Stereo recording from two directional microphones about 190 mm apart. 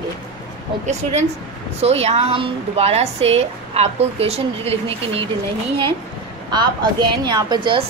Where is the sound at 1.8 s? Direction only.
35° right (ahead or behind).